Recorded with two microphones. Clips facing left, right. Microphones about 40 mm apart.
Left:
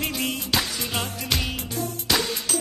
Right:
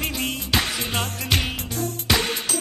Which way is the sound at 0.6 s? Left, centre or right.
Right.